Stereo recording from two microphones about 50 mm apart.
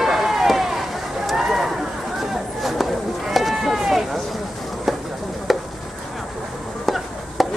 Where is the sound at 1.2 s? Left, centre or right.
Centre.